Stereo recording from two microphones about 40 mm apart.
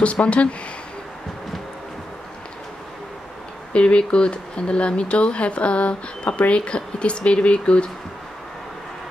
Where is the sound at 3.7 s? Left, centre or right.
Left.